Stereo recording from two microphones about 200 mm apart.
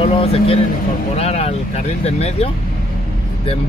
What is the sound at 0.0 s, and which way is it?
Speech, 30° left (ahead or behind).